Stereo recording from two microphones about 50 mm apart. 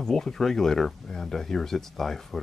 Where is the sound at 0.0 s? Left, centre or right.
Centre.